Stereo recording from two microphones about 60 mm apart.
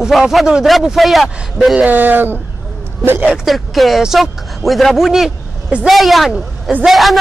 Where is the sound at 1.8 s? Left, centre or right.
Right.